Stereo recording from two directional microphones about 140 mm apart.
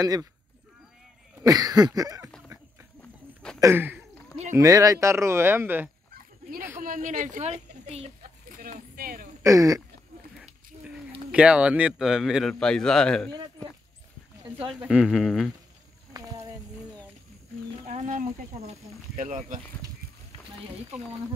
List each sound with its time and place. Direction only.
0.0 s speech: 25° right (ahead or behind)
1.4 s speech: 25° right (ahead or behind)
3.5 s a sound: 20° right (ahead or behind)
4.6 s speech: 25° right (ahead or behind)
6.8 s a woman's voice: 75° right (ahead or behind); by 8.1 s 55° right (ahead or behind)
8.5 s a sound: 75° right (ahead or behind)
9.4 s speech: 25° right (ahead or behind)
10.7 s a sound: 45° right (ahead or behind)
11.3 s a man's voice: 5° right (ahead or behind)
14.7 s a man's voice: 5° right (ahead or behind)
16.1 s a sound: 25° right (ahead or behind)
17.8 s speech: 60° right (ahead or behind)